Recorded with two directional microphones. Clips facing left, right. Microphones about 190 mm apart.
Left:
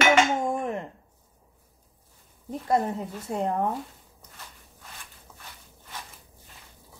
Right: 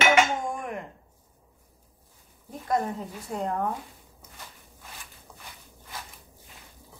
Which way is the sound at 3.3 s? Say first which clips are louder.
Left 3 dB; 25° left (ahead or behind).